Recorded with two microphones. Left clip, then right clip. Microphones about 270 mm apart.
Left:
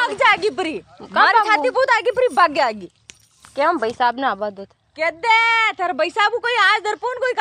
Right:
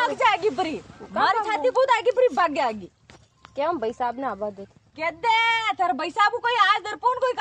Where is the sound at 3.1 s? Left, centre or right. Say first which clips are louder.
Left 5 dB; left.